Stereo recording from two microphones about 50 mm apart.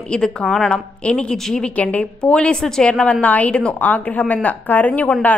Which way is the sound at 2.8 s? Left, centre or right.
Left.